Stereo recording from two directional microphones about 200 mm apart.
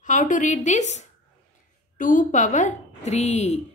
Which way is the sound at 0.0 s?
40° left (ahead or behind).